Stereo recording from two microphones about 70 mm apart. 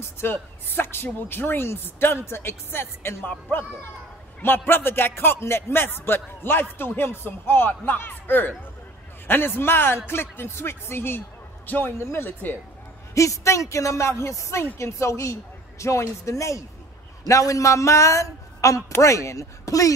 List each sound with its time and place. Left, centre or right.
0.0 s a man's voice: left
13.1 s speech: left